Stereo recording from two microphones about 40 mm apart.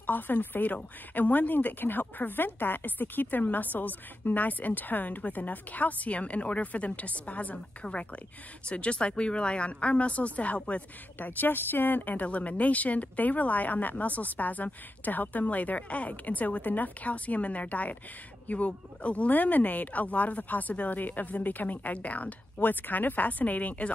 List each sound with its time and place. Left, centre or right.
0.0 s a woman's voice: left
22.6 s a woman's voice: left